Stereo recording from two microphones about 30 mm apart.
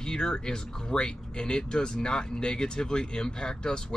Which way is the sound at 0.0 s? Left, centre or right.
Left.